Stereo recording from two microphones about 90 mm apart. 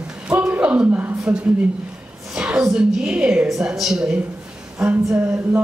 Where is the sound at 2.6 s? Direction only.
10° right (ahead or behind).